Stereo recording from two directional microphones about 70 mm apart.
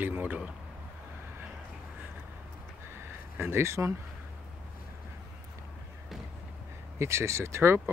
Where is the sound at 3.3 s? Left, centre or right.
Right.